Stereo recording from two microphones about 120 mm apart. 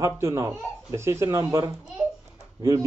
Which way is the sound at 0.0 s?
25° right (ahead or behind).